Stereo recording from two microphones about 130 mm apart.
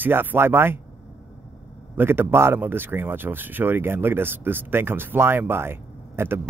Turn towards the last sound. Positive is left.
turn(degrees=-20)  # may be behind; listen again after turning